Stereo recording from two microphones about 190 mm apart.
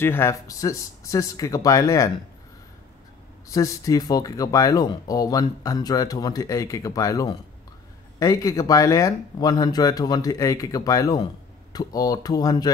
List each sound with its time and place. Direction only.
0.0 s speech: 10° left (ahead or behind)
3.4 s speech: 15° left (ahead or behind)